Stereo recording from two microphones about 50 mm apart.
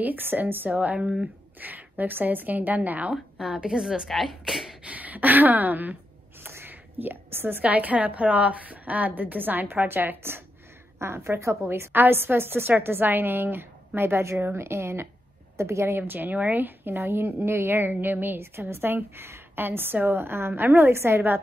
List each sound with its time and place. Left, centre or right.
0.0 s a woman's voice: right
0.7 s a woman's voice: right
3.3 s a woman's voice: centre
4.1 s speech: centre
4.8 s a woman's voice: right
6.4 s a sound: right
7.6 s a woman's voice: right
12.0 s a woman's voice: right
16.0 s a woman's voice: right